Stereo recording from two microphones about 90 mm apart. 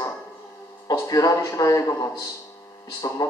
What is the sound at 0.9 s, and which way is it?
A man's voice, 45° left (ahead or behind).